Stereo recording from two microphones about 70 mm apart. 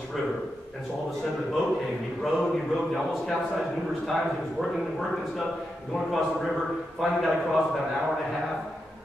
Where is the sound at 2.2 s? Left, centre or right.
Centre.